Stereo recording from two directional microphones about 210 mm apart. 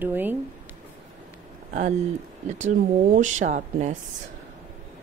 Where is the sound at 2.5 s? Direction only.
35° right (ahead or behind).